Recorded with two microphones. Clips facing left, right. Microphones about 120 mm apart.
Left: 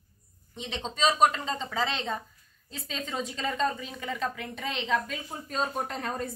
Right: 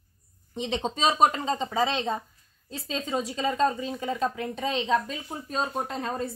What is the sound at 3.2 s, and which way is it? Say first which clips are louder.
A woman's voice: right 3 dB; 15° right (ahead or behind).